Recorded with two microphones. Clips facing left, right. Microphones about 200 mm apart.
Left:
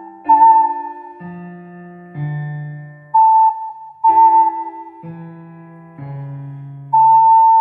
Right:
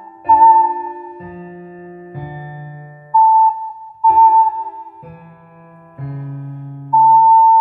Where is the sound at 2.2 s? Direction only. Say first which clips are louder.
Left 4 dB; 40° right (ahead or behind).